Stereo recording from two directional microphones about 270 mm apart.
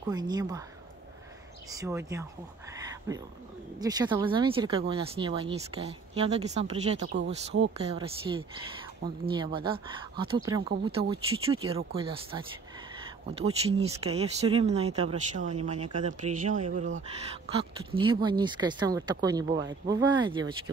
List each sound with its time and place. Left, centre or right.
0.1 s speech: centre
1.7 s speech: centre
3.8 s speech: centre
7.1 s speech: right
7.7 s speech: right